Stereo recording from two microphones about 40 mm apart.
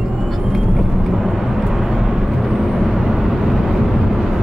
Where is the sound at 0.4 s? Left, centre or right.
Centre.